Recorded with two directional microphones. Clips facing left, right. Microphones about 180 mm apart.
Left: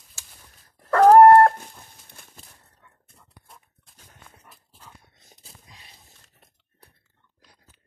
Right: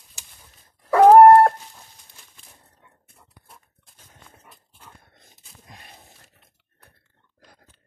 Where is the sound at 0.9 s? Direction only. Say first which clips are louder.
Right 2 dB; 10° right (ahead or behind).